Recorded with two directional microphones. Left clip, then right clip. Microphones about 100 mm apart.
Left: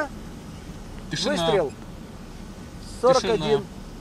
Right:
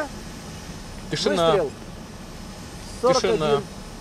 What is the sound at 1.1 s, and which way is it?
Speech, 25° right (ahead or behind).